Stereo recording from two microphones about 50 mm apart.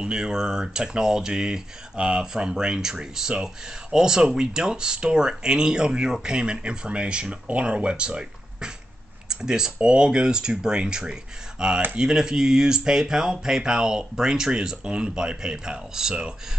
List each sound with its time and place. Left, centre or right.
0.0 s speech: centre